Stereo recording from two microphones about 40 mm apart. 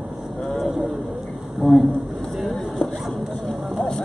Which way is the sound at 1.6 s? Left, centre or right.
Centre.